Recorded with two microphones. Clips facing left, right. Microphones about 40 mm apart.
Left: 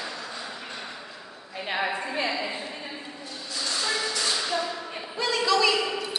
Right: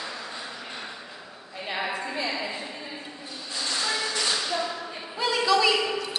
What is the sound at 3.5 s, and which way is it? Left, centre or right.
Train, centre.